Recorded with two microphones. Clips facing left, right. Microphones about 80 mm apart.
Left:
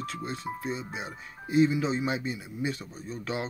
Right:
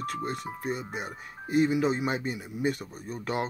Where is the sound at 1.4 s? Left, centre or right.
Right.